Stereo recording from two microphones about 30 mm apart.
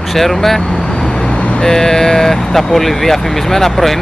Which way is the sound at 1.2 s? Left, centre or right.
Left.